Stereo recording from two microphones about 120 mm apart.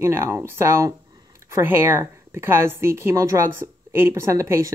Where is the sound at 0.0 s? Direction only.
20° right (ahead or behind).